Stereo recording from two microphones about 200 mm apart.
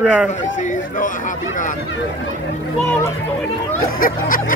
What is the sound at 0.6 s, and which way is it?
Speech, 40° left (ahead or behind).